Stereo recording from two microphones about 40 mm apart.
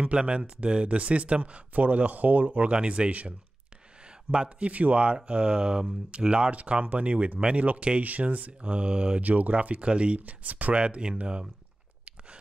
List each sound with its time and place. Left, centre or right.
0.0 s speech: right
2.7 s speech: right
4.3 s speech: right
4.6 s speech: right
5.1 s speech: right
6.5 s speech: right
7.6 s speech: right
9.2 s speech: right
10.8 s speech: right